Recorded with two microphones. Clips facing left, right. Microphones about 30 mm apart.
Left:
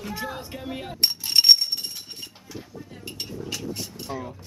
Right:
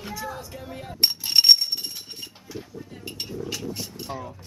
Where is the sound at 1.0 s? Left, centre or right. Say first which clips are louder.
Right 1 dB; centre.